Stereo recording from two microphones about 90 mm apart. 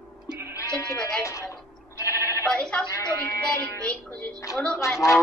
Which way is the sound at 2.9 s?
35° left (ahead or behind).